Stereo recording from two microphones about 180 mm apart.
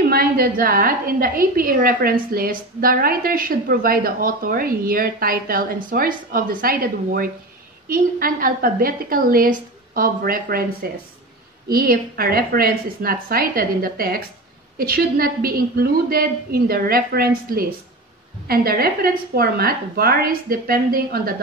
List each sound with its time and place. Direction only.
0.0 s a woman's voice: 55° right (ahead or behind)